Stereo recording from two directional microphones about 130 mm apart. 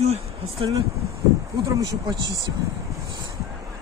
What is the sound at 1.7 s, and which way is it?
Speech, 30° right (ahead or behind).